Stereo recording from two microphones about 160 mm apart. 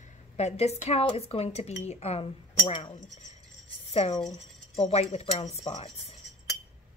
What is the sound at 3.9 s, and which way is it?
Speech, 40° left (ahead or behind).